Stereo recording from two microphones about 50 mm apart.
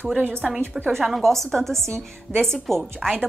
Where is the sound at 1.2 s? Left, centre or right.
Centre.